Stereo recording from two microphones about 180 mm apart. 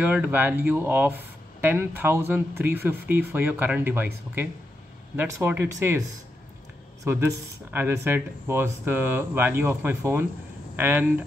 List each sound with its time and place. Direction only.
0.0 s speech: 10° right (ahead or behind)
7.7 s speech: 10° right (ahead or behind)